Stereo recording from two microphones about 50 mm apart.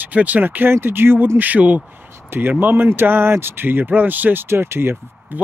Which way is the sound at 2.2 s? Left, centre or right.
Right.